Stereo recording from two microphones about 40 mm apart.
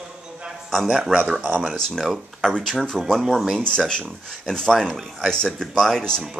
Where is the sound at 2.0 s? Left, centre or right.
Centre.